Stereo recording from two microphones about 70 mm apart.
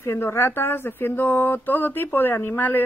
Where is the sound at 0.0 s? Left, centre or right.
Left.